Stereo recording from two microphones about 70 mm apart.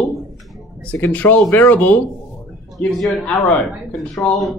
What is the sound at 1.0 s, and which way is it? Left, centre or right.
Speech, left.